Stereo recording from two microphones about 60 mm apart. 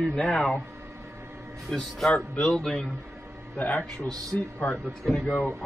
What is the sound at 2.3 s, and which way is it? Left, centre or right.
Speech, centre.